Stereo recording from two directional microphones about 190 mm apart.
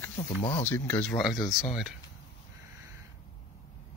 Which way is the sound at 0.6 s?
10° left (ahead or behind).